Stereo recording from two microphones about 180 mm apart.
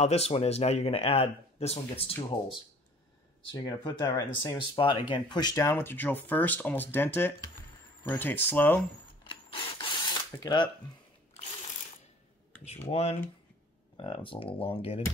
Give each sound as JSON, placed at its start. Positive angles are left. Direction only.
{"t": 0.0, "sound": "speech", "side_deg": 35}
{"t": 3.6, "sound": "speech", "side_deg": 20}
{"t": 9.2, "sound": "a sound", "side_deg": 25}
{"t": 10.4, "sound": "speech", "side_deg": 25}
{"t": 12.6, "sound": "speech", "side_deg": 35}